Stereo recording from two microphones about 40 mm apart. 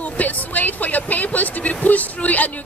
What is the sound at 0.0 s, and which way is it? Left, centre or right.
Speech, left.